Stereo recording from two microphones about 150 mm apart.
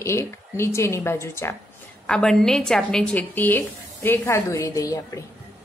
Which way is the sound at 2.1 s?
5° left (ahead or behind).